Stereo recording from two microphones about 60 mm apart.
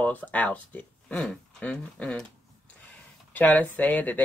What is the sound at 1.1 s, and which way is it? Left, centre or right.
Speech, centre.